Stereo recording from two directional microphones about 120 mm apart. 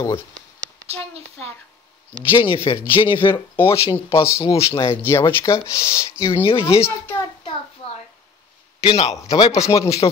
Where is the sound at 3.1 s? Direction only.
20° left (ahead or behind).